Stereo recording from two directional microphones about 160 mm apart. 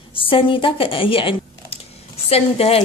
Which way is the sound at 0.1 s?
35° left (ahead or behind).